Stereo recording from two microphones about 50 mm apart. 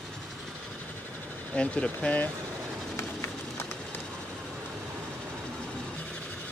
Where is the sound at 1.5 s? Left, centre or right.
Left.